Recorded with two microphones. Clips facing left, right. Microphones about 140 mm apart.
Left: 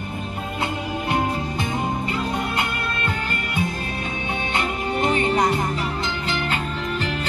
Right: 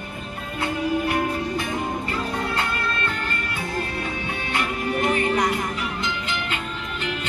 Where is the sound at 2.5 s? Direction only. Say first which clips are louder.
Even; 15° left (ahead or behind).